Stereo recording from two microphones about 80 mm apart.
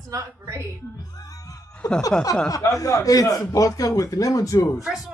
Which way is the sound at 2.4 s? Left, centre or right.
Left.